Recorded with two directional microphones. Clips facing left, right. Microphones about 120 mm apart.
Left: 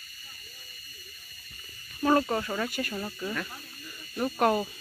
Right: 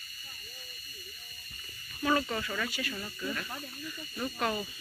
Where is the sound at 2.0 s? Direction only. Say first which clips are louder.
Left 5 dB; 35° left (ahead or behind).